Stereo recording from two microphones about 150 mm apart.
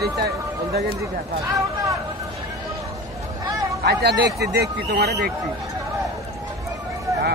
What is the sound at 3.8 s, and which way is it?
Speech, 90° right.